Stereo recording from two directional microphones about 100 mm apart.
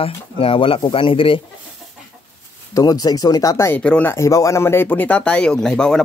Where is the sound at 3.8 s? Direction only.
10° left (ahead or behind).